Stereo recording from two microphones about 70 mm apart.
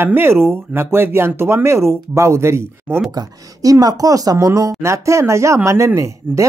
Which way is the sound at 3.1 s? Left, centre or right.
Right.